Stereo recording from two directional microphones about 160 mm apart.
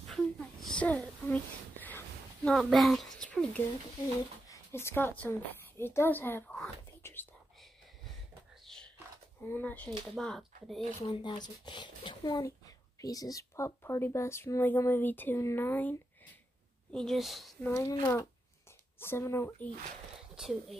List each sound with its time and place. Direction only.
0.1 s a sound: centre (ahead or behind)
4.5 s a woman's voice: 15° left (ahead or behind)
7.0 s whispering: 15° left (ahead or behind)
8.6 s a sound: 5° left (ahead or behind)
9.5 s speech: 10° left (ahead or behind)
11.1 s speech: 30° left (ahead or behind); by 17.6 s centre (ahead or behind)
17.6 s speech: 15° left (ahead or behind)
20.3 s speech: centre (ahead or behind)